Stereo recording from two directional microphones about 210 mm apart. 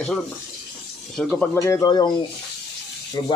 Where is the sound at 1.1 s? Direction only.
5° left (ahead or behind).